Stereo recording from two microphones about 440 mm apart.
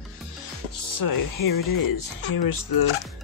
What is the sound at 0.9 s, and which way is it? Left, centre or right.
Speech, left.